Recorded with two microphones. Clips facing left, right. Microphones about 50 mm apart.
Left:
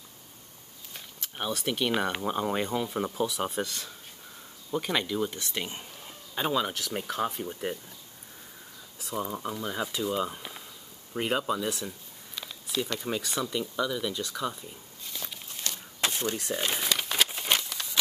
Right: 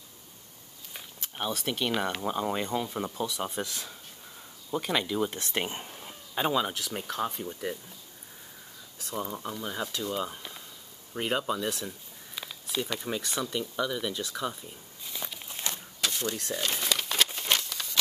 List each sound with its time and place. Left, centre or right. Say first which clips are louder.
0.9 s speech: even; centre
3.6 s speech: left 1 dB; centre
5.4 s speech: right 3 dB; right
5.9 s a sound: even; centre
6.9 s speech: left 2 dB; centre
9.0 s speech: left 2 dB; centre
15.0 s walk: right 1 dB; centre
15.4 s walk: right 2 dB; right
16.0 s speech: left 2 dB; left
16.7 s a sound: right 1 dB; centre